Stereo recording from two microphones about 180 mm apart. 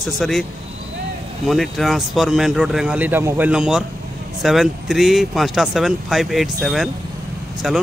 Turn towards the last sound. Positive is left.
turn(degrees=0)  # may be behind; listen again after turning